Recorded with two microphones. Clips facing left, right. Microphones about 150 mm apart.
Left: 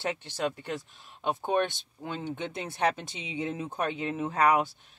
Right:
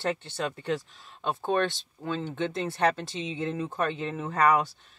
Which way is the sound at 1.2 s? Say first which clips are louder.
Right 1 dB; 15° left (ahead or behind).